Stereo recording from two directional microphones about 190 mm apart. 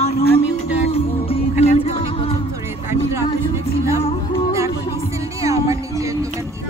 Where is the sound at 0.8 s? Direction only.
30° left (ahead or behind).